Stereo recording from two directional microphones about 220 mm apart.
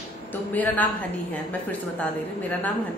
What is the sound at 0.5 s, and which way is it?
Speech, 5° left (ahead or behind).